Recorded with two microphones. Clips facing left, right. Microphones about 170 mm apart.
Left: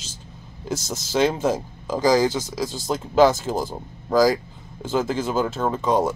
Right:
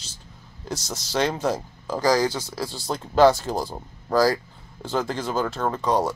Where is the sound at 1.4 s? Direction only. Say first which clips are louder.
Left 3 dB; 20° left (ahead or behind).